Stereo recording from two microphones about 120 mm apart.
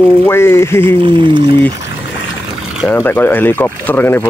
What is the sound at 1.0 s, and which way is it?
Speech, 40° right (ahead or behind).